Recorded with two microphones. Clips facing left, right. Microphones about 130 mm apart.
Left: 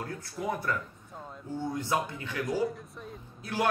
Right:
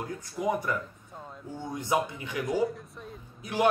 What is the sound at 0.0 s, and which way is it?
A man's voice, 15° right (ahead or behind).